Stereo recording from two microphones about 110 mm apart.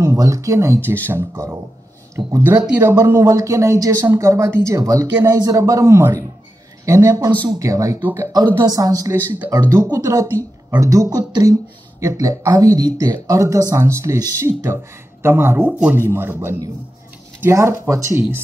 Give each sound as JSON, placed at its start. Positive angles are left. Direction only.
{"t": 0.0, "sound": "speech", "side_deg": -30}
{"t": 8.5, "sound": "speech", "side_deg": -35}
{"t": 9.1, "sound": "speech", "side_deg": -20}